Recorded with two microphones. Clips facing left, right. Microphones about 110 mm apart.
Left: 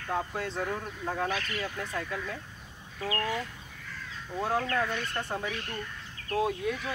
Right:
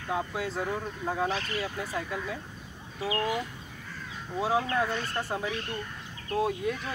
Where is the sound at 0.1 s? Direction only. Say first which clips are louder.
Right 1 dB; 5° right (ahead or behind).